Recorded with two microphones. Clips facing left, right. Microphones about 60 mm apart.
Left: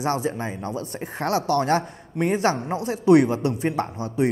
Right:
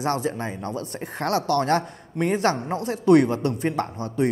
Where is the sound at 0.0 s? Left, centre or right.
Centre.